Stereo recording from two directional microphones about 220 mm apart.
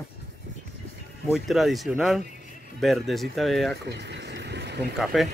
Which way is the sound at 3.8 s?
50° right (ahead or behind).